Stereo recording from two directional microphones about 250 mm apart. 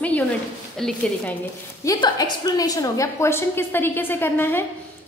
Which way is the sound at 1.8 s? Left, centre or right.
Centre.